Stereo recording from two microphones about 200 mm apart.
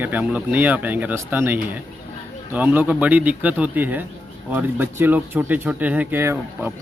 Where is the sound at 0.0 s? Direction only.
10° right (ahead or behind).